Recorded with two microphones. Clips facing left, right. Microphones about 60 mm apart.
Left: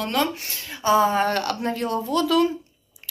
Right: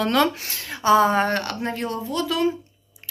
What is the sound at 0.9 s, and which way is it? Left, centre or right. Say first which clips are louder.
Speech: right 2 dB; right.